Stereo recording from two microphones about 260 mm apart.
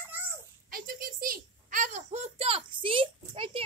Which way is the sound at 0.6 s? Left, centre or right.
Right.